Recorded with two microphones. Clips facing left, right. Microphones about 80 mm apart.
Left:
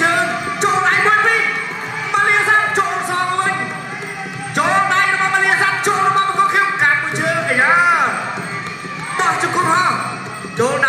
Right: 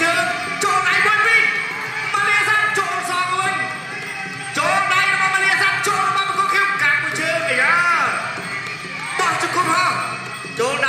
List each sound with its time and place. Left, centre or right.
0.0 s music: left
4.6 s music: left
9.2 s music: left
10.6 s jingle bell: left